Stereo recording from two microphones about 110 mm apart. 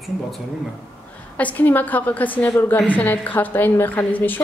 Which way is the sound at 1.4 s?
15° left (ahead or behind).